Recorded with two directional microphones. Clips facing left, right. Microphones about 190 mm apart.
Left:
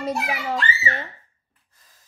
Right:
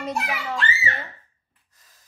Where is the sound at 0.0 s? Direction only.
35° left (ahead or behind).